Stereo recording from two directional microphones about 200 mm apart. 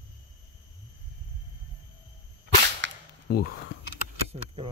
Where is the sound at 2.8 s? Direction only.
65° right (ahead or behind).